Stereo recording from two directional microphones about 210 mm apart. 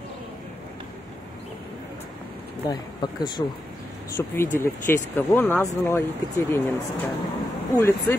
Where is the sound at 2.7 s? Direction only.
20° left (ahead or behind).